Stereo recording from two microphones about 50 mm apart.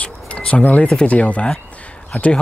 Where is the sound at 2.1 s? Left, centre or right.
Left.